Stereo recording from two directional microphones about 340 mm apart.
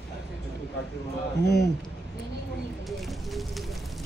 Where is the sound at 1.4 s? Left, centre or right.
Left.